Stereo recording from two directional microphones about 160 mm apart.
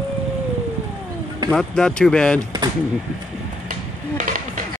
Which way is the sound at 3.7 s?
55° right (ahead or behind).